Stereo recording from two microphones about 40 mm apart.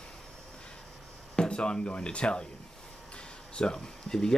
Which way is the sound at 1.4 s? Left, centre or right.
Left.